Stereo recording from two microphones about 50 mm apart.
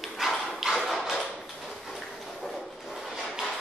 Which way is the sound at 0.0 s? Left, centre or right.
Centre.